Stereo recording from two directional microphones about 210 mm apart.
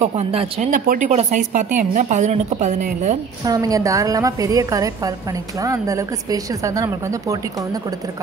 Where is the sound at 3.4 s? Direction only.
15° right (ahead or behind).